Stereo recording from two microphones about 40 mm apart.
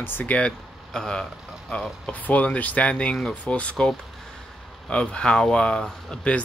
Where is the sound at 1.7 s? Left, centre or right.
Left.